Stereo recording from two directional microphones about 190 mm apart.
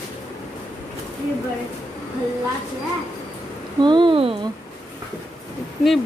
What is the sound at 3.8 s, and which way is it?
Speech, 25° right (ahead or behind).